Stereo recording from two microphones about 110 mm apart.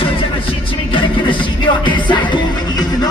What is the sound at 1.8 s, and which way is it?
Music, 45° left (ahead or behind).